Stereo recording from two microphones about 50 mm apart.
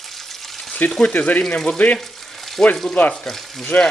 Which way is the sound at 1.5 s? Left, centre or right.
Centre.